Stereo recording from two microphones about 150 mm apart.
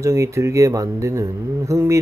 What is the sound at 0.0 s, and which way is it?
Speech, 20° right (ahead or behind).